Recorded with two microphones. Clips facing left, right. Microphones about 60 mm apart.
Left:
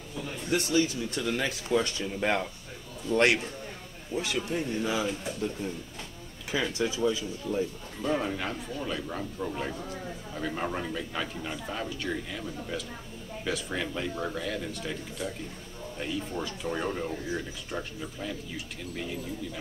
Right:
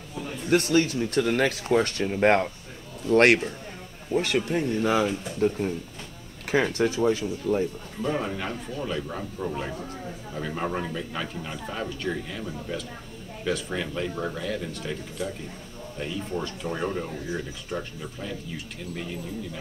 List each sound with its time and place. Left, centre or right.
0.5 s speech: right
8.1 s a man's voice: centre